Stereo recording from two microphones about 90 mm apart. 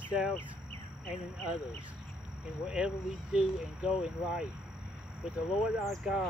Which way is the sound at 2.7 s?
10° right (ahead or behind).